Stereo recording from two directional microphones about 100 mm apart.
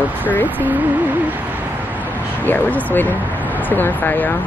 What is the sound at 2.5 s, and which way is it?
Speech, 20° left (ahead or behind).